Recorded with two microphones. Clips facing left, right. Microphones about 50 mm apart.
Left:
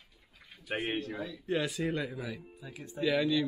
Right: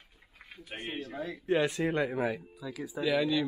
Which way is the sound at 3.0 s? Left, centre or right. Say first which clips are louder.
Even; centre.